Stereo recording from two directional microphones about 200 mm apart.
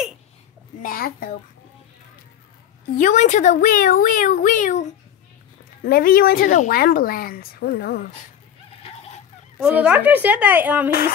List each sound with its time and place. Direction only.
0.8 s a child's voice: 45° left (ahead or behind)
3.0 s speech: 35° left (ahead or behind)
9.6 s a woman's voice: 5° right (ahead or behind)